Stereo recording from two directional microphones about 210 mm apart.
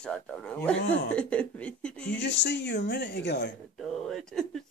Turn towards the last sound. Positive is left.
turn(degrees=0)  # may be behind; listen again after turning